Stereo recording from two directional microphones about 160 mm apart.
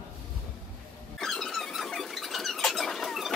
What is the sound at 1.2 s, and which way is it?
Squeak, centre (ahead or behind).